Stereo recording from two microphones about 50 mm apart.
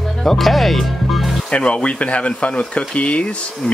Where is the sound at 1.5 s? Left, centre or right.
Left.